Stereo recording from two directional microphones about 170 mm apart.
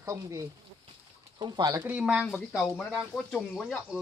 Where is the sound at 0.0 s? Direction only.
15° right (ahead or behind).